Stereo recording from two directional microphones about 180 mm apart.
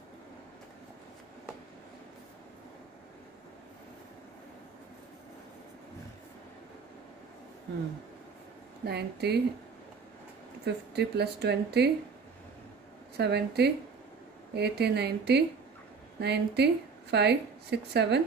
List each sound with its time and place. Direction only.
8.8 s a woman's voice: 65° right (ahead or behind)
10.6 s a woman's voice: 65° right (ahead or behind)
13.2 s a woman's voice: 65° right (ahead or behind)